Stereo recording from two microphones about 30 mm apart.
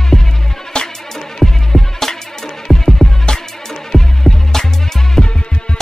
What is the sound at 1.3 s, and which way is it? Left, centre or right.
Music, centre.